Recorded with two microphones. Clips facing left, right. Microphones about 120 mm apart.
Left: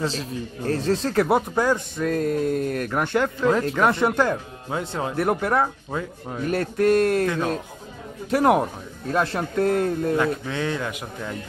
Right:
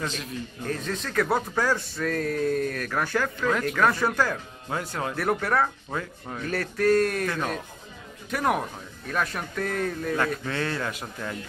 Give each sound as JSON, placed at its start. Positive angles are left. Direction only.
{"t": 0.0, "sound": "speech", "side_deg": 35}
{"t": 10.1, "sound": "a man's voice", "side_deg": 10}